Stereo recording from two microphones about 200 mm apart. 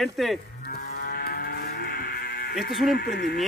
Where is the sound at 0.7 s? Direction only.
50° left (ahead or behind).